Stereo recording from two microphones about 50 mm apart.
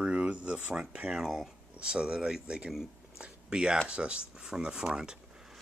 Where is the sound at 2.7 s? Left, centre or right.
Centre.